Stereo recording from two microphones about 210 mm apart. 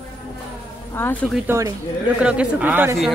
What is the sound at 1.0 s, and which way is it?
Speech, 10° left (ahead or behind).